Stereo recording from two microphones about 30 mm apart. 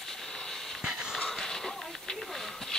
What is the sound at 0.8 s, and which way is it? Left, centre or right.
Wheeze, right.